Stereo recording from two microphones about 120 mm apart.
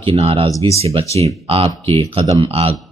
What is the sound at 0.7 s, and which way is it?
Speech, 55° right (ahead or behind).